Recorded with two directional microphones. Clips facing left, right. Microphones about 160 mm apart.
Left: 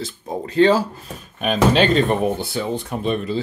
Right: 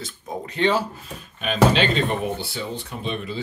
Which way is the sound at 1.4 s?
45° left (ahead or behind).